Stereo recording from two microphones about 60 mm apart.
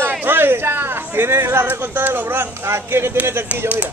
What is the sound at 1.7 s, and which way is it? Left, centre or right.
Speech, right.